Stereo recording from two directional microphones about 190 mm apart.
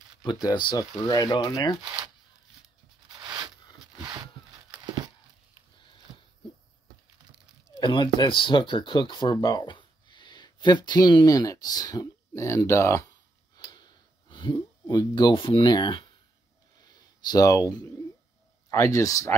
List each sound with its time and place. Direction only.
0.2 s speech: 20° left (ahead or behind)
1.8 s speech: 25° right (ahead or behind)
3.1 s a sound: 20° right (ahead or behind)
4.0 s dog: 25° right (ahead or behind)
7.8 s speech: 25° left (ahead or behind)
14.3 s speech: 20° left (ahead or behind)
16.8 s a sound: 20° left (ahead or behind)
18.7 s speech: 15° left (ahead or behind)